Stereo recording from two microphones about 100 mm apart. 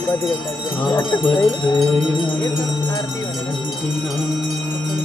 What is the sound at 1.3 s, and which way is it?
Wind chime, 50° left (ahead or behind).